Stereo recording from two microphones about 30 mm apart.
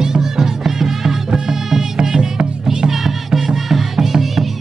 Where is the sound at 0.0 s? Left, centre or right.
Centre.